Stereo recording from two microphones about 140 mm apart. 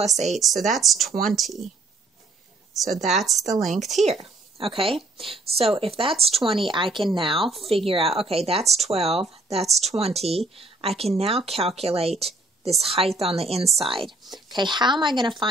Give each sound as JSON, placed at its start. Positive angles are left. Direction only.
{"t": 0.0, "sound": "speech", "side_deg": -50}
{"t": 0.3, "sound": "speech", "side_deg": 0}
{"t": 2.7, "sound": "speech", "side_deg": 0}
{"t": 4.0, "sound": "speech", "side_deg": -45}
{"t": 14.0, "sound": "speech", "side_deg": 0}
{"t": 14.5, "sound": "speech", "side_deg": -30}